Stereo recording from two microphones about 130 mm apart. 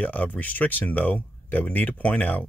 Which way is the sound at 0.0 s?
10° left (ahead or behind).